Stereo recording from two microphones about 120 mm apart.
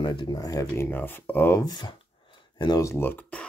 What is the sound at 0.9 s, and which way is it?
Speech, 15° left (ahead or behind).